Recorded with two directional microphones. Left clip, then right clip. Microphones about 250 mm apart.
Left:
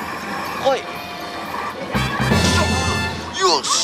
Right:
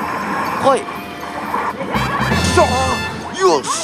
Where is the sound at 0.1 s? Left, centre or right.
Centre.